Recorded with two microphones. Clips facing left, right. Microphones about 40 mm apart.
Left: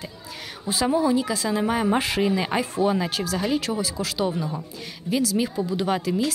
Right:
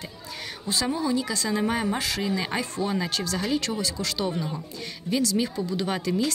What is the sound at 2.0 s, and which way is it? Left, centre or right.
Speech, left.